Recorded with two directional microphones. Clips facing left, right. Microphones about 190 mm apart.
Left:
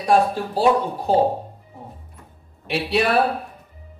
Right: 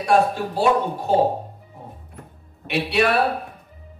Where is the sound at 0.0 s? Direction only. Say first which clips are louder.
Even; 35° left (ahead or behind).